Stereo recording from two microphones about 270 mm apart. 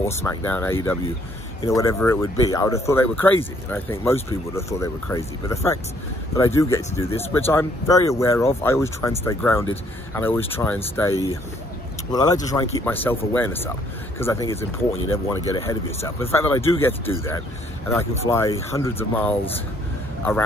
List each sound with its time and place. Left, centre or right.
0.0 s speech: centre